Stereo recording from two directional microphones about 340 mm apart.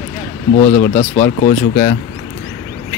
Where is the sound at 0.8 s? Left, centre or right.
Centre.